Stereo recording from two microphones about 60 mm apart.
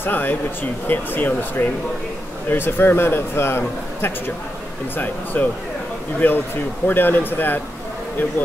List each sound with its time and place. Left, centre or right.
0.0 s a man's voice: left
4.9 s a man's voice: left